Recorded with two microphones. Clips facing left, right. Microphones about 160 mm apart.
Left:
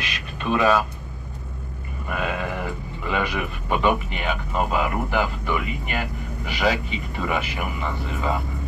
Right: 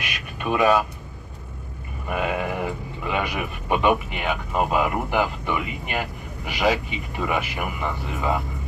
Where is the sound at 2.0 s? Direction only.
15° right (ahead or behind).